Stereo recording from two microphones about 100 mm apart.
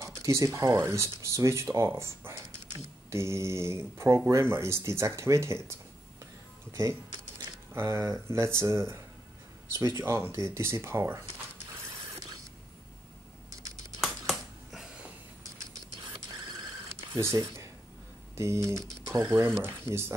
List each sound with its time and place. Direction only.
0.0 s speech: 30° right (ahead or behind)
7.7 s speech: 25° right (ahead or behind)
9.8 s speech: 35° right (ahead or behind)
10.0 s speech: 20° right (ahead or behind)
14.0 s a sound: centre (ahead or behind)
17.2 s speech: 30° right (ahead or behind)
19.3 s speech: 20° right (ahead or behind)